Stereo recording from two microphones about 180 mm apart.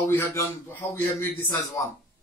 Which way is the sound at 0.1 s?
15° left (ahead or behind).